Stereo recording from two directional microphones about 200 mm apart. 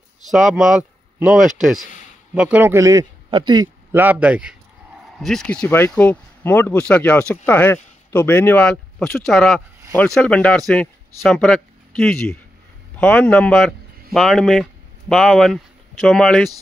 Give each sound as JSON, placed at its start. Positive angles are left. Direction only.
{"t": 0.3, "sound": "a man's voice", "side_deg": 0}
{"t": 4.0, "sound": "speech", "side_deg": -10}